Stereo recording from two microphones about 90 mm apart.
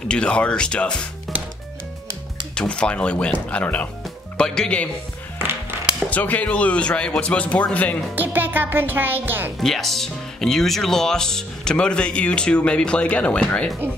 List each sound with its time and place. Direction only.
0.1 s speech: 10° left (ahead or behind)
1.3 s music: centre (ahead or behind)
2.5 s speech: 10° left (ahead or behind)
5.4 s music: 25° right (ahead or behind)
6.0 s speech: 15° left (ahead or behind)
8.2 s music: 20° right (ahead or behind)
9.6 s speech: 5° left (ahead or behind)